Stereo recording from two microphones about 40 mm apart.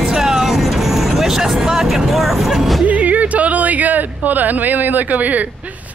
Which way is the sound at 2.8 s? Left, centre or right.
Right.